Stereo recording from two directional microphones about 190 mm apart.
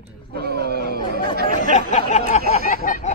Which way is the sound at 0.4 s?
55° right (ahead or behind).